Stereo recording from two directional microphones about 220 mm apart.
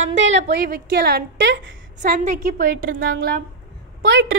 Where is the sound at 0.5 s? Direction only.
45° right (ahead or behind).